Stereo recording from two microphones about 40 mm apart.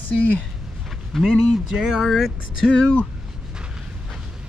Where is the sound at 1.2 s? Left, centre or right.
Centre.